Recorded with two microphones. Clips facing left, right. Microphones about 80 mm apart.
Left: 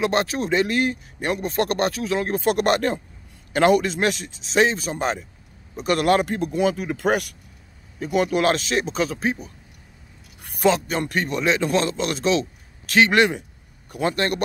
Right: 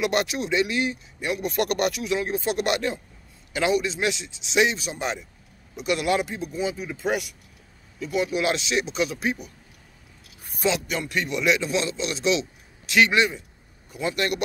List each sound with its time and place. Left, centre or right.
0.0 s speech: left
10.4 s a sound: left
10.7 s speech: left
13.1 s speech: left
13.8 s a man's voice: left
14.1 s speech: left